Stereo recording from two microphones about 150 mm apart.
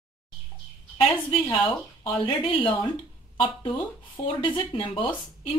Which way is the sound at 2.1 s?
35° left (ahead or behind).